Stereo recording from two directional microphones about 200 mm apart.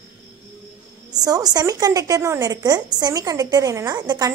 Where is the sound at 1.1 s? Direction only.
20° right (ahead or behind).